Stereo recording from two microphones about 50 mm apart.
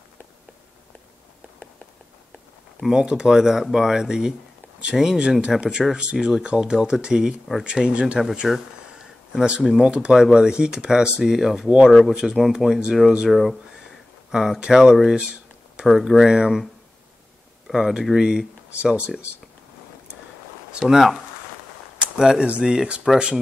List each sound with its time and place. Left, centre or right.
2.8 s speech: centre
8.4 s a sound: centre
9.6 s speech: centre
12.2 s speech: centre
15.0 s a sound: centre
15.9 s speech: centre
17.7 s speech: centre
20.7 s speech: centre
22.0 s a sound: centre
22.4 s speech: right